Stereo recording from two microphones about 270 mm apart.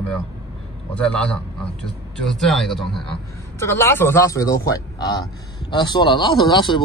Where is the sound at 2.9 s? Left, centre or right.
Centre.